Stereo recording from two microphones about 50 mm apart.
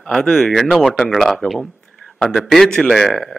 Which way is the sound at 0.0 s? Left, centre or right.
Centre.